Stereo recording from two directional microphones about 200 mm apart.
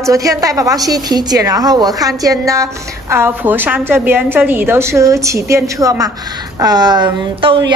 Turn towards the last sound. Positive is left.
turn(degrees=-25)  # may be behind; listen again after turning